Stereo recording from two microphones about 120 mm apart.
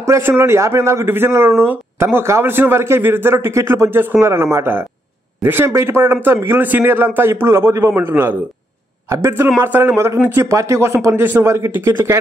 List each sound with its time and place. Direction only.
0.0 s a man's voice: 20° right (ahead or behind)
1.6 s a sound: 15° right (ahead or behind)
2.1 s a man's voice: 20° right (ahead or behind)